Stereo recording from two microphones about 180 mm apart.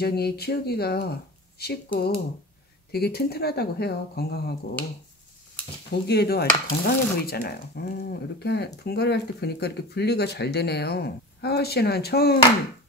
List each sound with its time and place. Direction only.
0.0 s speech: 60° left (ahead or behind)
6.0 s speech: 65° left (ahead or behind)